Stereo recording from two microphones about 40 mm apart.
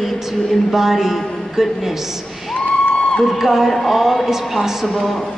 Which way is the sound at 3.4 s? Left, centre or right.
Centre.